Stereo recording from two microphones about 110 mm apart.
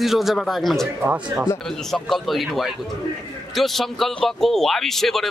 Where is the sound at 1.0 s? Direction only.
20° right (ahead or behind).